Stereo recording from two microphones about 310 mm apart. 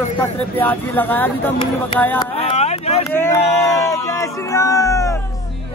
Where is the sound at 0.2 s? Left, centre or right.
Centre.